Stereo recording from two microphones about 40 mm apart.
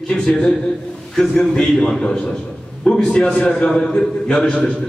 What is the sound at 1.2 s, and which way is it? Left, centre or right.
A man's voice, centre.